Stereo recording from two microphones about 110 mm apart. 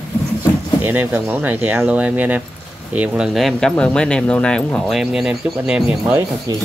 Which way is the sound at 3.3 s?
Centre (ahead or behind).